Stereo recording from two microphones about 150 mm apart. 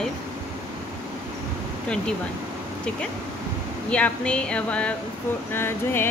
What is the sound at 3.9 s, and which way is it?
Speech, 10° left (ahead or behind).